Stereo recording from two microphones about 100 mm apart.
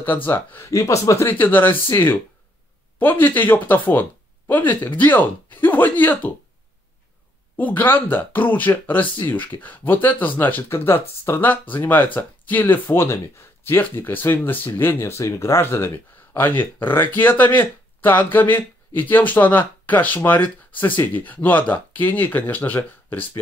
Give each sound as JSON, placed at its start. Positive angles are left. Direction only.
{"t": 0.0, "sound": "speech", "side_deg": 20}
{"t": 7.5, "sound": "speech", "side_deg": 20}